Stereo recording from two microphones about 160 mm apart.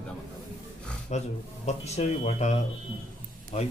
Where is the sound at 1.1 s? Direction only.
45° left (ahead or behind).